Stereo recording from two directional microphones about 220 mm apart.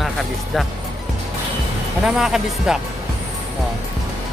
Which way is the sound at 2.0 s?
Centre (ahead or behind).